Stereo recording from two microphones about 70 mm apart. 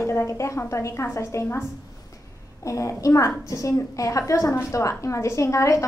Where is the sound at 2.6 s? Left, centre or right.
Left.